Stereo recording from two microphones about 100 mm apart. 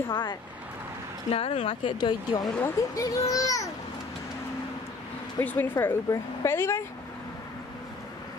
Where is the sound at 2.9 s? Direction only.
35° left (ahead or behind).